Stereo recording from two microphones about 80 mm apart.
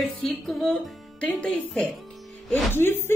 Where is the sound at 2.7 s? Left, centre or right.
Left.